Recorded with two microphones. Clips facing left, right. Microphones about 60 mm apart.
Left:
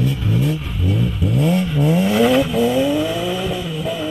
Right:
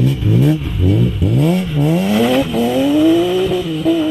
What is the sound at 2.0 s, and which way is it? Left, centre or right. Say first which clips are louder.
Vehicle: even; centre.